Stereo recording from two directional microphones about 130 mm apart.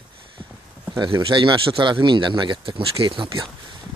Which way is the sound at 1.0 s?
40° right (ahead or behind).